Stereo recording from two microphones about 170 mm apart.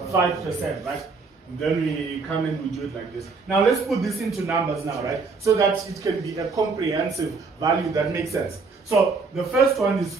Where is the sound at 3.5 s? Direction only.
Centre (ahead or behind).